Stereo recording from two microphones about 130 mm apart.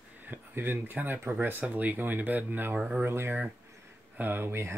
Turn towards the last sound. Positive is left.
turn(degrees=-20)  # may be behind; listen again after turning